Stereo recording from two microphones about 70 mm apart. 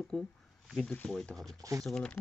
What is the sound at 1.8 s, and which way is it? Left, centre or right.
Speech, centre.